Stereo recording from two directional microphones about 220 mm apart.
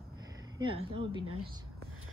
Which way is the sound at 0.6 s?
20° right (ahead or behind).